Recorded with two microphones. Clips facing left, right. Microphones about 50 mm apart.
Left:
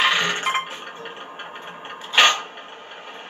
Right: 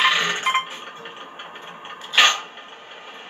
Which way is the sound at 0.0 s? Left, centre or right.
Centre.